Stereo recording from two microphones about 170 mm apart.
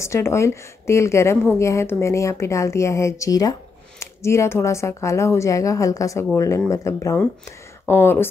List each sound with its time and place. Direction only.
0.0 s a woman's voice: 15° left (ahead or behind)